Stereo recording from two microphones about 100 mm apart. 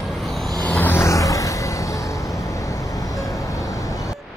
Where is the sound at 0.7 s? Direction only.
20° left (ahead or behind).